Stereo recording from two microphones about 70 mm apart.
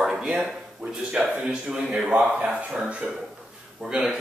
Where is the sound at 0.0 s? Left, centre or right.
Centre.